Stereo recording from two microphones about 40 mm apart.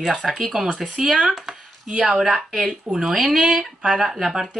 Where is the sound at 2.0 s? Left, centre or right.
Centre.